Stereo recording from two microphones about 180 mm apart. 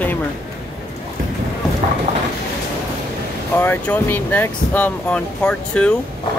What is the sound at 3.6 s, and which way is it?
Speech, 10° left (ahead or behind).